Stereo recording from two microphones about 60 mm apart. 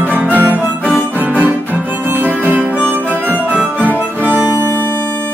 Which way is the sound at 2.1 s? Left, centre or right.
Right.